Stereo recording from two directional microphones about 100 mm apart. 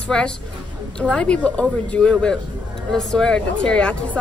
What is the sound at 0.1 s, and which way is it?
A woman's voice, 10° left (ahead or behind).